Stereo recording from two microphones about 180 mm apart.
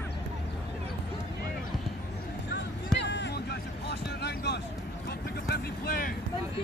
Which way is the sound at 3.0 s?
70° left (ahead or behind).